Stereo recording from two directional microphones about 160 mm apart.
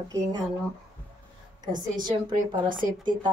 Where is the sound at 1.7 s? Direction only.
55° right (ahead or behind).